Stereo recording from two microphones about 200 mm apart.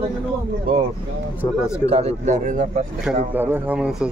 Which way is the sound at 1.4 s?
15° left (ahead or behind).